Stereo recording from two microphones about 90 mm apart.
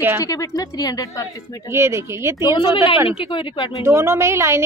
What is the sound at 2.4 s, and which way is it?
Speech, 55° left (ahead or behind).